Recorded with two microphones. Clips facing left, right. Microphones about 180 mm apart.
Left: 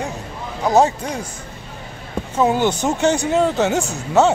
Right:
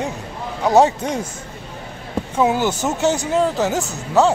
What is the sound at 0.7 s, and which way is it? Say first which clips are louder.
Speech: right 1 dB; 15° right (ahead or behind).